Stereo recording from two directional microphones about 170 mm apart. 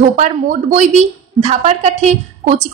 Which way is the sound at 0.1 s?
45° right (ahead or behind).